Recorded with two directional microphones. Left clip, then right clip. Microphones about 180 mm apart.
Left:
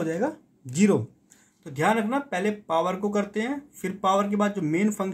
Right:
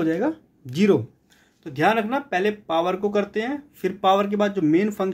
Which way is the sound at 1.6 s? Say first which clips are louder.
Right 3 dB; 40° right (ahead or behind).